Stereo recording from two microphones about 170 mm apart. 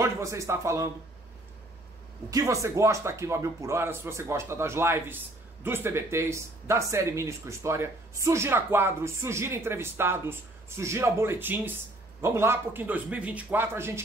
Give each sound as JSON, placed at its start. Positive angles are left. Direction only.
{"t": 0.0, "sound": "a man's voice", "side_deg": -15}
{"t": 2.3, "sound": "a man's voice", "side_deg": -15}